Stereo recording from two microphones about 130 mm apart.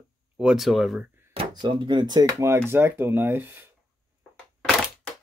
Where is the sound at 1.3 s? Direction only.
40° right (ahead or behind); by 3.6 s 15° right (ahead or behind).